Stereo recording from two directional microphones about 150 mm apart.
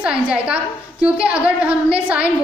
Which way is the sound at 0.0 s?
10° right (ahead or behind).